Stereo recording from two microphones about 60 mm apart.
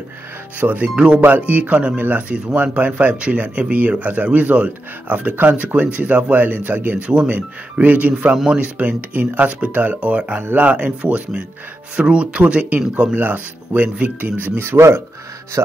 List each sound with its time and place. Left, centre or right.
0.6 s speech: right
7.1 s speech: centre; by 15.0 s right